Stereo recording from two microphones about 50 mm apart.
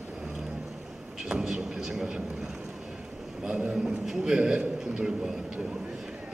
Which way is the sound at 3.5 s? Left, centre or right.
Right.